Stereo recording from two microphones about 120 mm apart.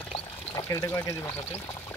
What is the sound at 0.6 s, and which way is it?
Speech, 20° left (ahead or behind).